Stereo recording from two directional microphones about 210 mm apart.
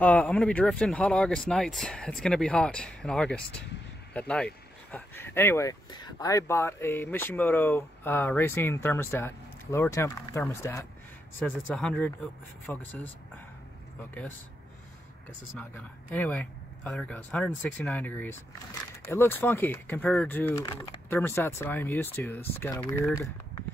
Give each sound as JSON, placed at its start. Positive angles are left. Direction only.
{"t": 0.0, "sound": "speech", "side_deg": 5}
{"t": 15.7, "sound": "speech", "side_deg": 5}